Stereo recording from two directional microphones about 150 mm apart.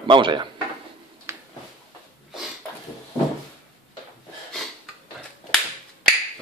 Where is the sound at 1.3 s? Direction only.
15° right (ahead or behind).